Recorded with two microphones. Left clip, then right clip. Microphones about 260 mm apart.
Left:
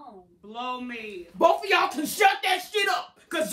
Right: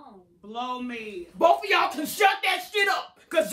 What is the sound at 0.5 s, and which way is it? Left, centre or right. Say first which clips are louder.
Speech: right 1 dB; centre.